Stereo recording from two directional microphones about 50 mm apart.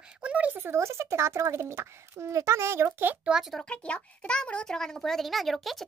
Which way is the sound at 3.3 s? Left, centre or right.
Right.